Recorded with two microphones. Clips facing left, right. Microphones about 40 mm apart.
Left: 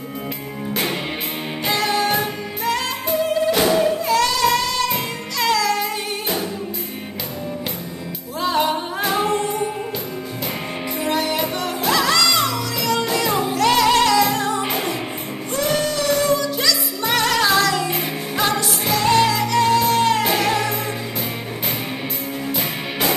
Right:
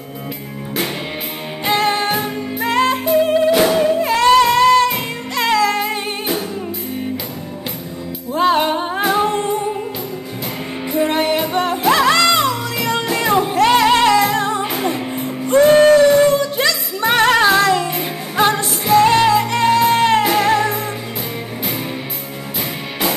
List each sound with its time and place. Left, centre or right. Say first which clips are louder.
1.7 s music: right 3 dB; right
3.5 s music: right 3 dB; centre
4.0 s music: right 6 dB; right
8.4 s music: right 5 dB; right
11.0 s music: right 5 dB; right